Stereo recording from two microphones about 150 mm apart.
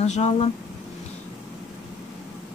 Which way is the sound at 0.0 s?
45° left (ahead or behind).